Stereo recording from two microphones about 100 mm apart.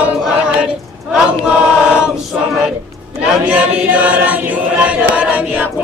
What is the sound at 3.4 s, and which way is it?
Chant, 15° right (ahead or behind).